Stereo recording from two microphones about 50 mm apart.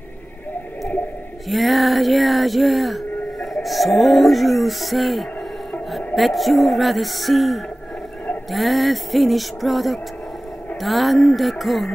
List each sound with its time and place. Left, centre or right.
1.5 s speech: centre
5.9 s music: centre